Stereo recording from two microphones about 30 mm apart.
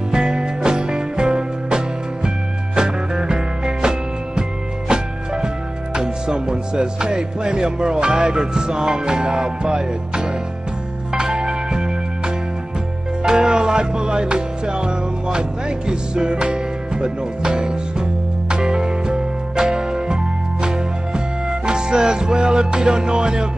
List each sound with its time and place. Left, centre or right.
0.1 s music: right
11.3 s music: right
13.2 s music: right